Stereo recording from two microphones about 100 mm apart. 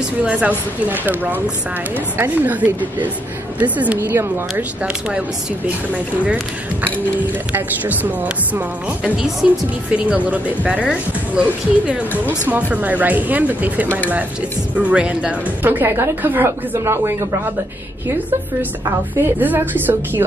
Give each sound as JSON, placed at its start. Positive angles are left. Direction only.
{"t": 0.2, "sound": "a woman's voice", "side_deg": -10}
{"t": 7.5, "sound": "speech", "side_deg": -15}
{"t": 9.0, "sound": "a woman's voice", "side_deg": -5}
{"t": 19.1, "sound": "a woman's voice", "side_deg": -20}